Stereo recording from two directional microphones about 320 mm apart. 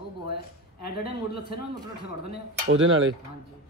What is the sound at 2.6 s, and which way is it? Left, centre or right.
Speech, right.